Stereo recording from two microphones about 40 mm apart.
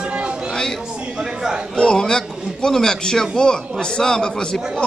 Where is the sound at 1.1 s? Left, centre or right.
Centre.